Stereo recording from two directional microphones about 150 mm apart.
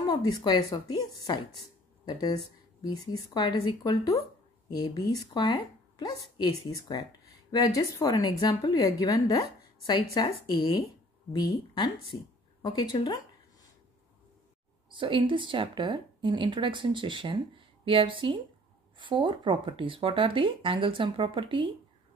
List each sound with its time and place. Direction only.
0.1 s a woman's voice: 25° left (ahead or behind)
14.9 s speech: 35° right (ahead or behind)